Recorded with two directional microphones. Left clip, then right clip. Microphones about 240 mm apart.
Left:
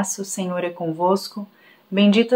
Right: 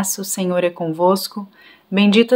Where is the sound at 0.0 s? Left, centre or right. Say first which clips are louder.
Right 3 dB; right.